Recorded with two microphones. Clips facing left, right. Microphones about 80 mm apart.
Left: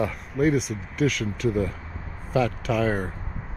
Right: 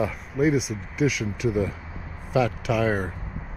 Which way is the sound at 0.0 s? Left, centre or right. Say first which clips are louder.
Even; centre.